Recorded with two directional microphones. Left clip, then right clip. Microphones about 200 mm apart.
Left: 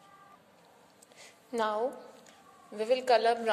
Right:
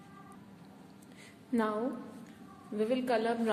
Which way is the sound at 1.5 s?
30° left (ahead or behind).